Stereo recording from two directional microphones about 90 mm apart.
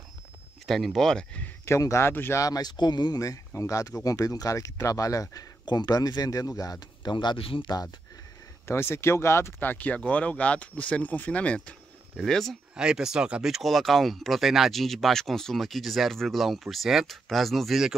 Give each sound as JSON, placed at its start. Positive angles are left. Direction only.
{"t": 0.7, "sound": "speech", "side_deg": 0}
{"t": 1.7, "sound": "speech", "side_deg": 30}
{"t": 2.4, "sound": "speech", "side_deg": 45}
{"t": 7.1, "sound": "speech", "side_deg": 60}
{"t": 8.6, "sound": "speech", "side_deg": 30}
{"t": 12.7, "sound": "speech", "side_deg": -10}